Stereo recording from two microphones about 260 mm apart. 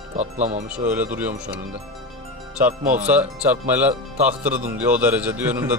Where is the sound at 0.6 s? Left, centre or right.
Centre.